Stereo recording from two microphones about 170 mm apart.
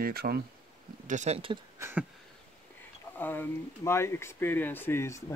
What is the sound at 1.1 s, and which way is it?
Speech, 40° right (ahead or behind).